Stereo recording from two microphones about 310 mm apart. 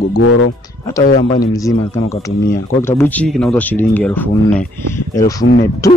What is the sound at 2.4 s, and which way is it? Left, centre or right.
Speech, left.